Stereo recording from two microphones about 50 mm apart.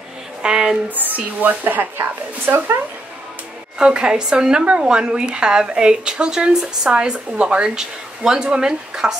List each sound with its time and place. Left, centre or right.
0.4 s speech: centre
0.8 s speech: right
3.7 s a woman's voice: centre